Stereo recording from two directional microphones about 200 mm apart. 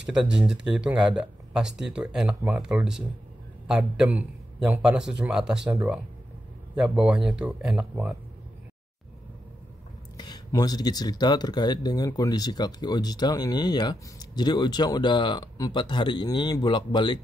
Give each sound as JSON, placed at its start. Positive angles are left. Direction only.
{"t": 0.0, "sound": "speech", "side_deg": -5}
{"t": 10.1, "sound": "speech", "side_deg": 20}